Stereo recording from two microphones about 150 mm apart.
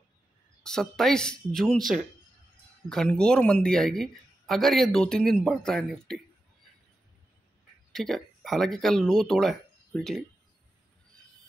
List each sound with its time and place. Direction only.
0.7 s speech: 5° left (ahead or behind)
2.9 s speech: 5° left (ahead or behind)
7.9 s speech: centre (ahead or behind)